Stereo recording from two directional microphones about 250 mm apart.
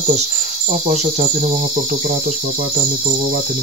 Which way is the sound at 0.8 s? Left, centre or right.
Right.